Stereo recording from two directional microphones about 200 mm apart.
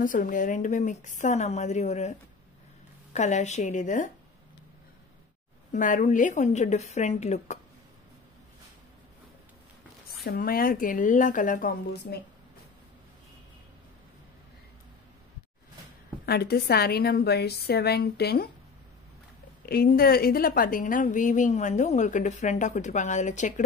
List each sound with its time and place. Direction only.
0.0 s a woman's voice: 40° left (ahead or behind)
5.7 s a woman's voice: 40° left (ahead or behind)
10.2 s a woman's voice: 50° left (ahead or behind)
16.3 s a woman's voice: 50° left (ahead or behind)
19.6 s a woman's voice: 50° left (ahead or behind)